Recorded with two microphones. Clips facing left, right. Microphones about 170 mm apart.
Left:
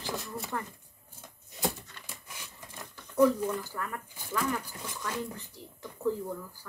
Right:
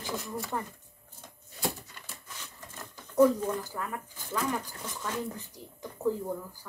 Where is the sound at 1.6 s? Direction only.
15° left (ahead or behind).